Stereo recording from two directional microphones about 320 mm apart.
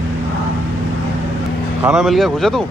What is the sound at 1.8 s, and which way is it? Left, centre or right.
Speech, centre.